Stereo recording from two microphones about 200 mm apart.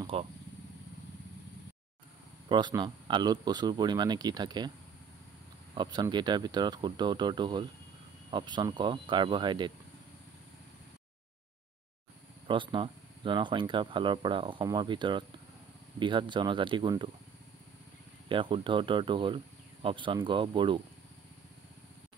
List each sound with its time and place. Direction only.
0.0 s speech: 30° right (ahead or behind)
2.5 s speech: 20° right (ahead or behind)
5.8 s speech: 20° right (ahead or behind)
12.4 s speech: 25° right (ahead or behind)
18.3 s speech: 25° right (ahead or behind)